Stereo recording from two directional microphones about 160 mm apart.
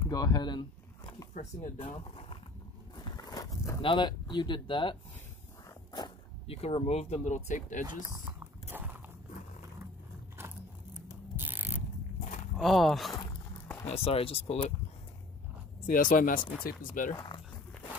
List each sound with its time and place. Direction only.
0.0 s speech: 20° left (ahead or behind)
1.3 s speech: 45° left (ahead or behind)
3.0 s a sound: 25° left (ahead or behind)
3.8 s speech: 30° left (ahead or behind)
5.9 s speech: 30° left (ahead or behind); by 7.8 s 50° left (ahead or behind)
7.8 s speech: 25° right (ahead or behind)
8.6 s walk: 10° right (ahead or behind)
11.3 s a sound: 10° right (ahead or behind)
12.5 s speech: centre (ahead or behind)
13.8 s speech: 40° left (ahead or behind)
15.9 s speech: 60° left (ahead or behind)
17.1 s speech: 25° left (ahead or behind)